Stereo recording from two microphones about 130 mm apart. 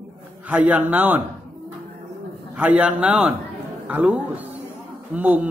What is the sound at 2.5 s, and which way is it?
A man's voice, 10° right (ahead or behind).